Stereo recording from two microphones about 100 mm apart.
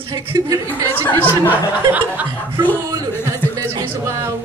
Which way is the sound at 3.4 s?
20° left (ahead or behind).